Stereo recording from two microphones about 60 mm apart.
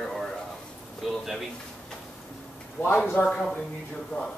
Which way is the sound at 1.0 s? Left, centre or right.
Centre.